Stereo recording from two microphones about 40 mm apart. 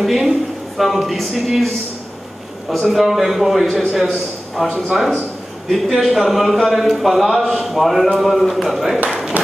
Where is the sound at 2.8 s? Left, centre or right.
Centre.